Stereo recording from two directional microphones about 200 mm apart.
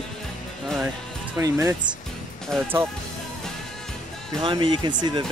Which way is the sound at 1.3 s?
10° right (ahead or behind).